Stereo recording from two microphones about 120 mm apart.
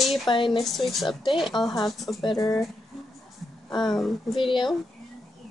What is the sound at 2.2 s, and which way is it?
Speech, 35° left (ahead or behind).